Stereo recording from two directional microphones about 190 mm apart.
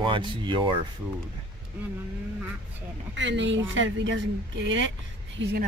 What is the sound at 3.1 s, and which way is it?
Speech, 75° right (ahead or behind).